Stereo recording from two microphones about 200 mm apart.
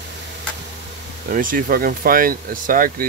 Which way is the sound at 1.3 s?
45° right (ahead or behind).